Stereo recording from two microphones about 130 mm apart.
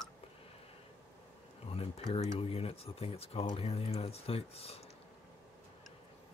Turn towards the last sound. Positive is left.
turn(degrees=50)  # may be behind; listen again after turning